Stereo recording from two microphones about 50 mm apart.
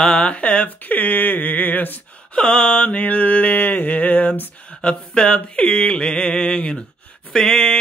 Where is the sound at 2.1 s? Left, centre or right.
Left.